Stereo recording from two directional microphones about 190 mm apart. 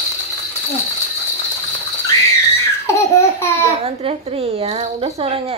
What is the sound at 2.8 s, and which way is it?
Laughter, 15° left (ahead or behind).